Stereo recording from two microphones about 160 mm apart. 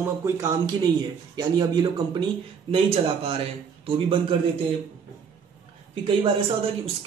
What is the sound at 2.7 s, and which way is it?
A man's voice, 40° right (ahead or behind).